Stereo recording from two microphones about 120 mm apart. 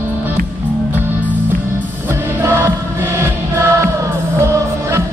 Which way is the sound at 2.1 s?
20° right (ahead or behind).